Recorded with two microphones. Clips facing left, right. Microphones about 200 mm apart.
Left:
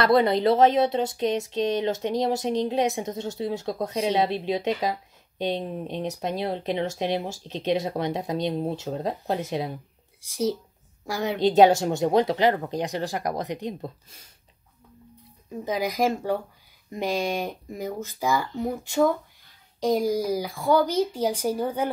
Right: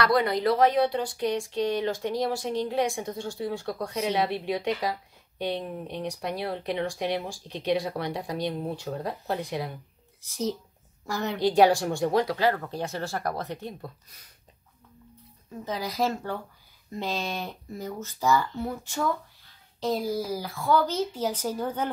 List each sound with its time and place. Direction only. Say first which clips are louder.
0.0 s speech: left 4 dB; 25° left (ahead or behind)
10.2 s speech: left 4 dB; 10° left (ahead or behind)
11.3 s speech: left 3 dB; 20° left (ahead or behind)
15.6 s speech: left 4 dB; 15° left (ahead or behind)